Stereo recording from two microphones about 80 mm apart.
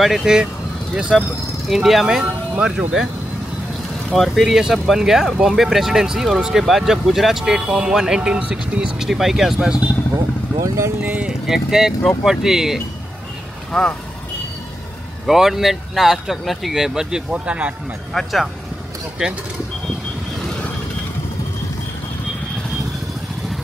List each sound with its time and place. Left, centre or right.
0.0 s speech: centre
4.1 s speech: centre
10.1 s speech: right
11.0 s speech: centre
11.4 s speech: centre
13.7 s speech: centre
15.2 s speech: centre
18.1 s speech: centre